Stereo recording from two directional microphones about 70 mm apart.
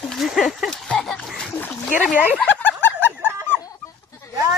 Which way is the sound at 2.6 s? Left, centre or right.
Left.